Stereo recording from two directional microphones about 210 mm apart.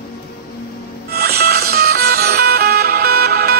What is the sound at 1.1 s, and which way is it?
Music, 50° right (ahead or behind).